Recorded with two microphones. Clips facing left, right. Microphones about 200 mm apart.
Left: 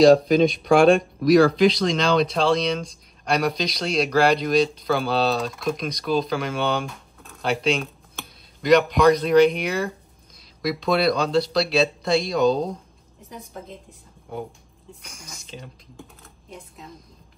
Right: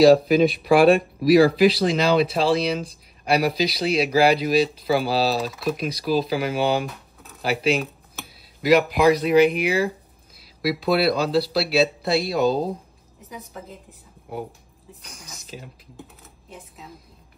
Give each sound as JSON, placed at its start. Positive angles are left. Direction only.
{"t": 0.0, "sound": "a woman's voice", "side_deg": -5}